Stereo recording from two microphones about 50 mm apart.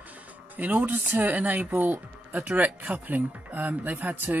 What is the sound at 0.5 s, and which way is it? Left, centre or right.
Speech, right.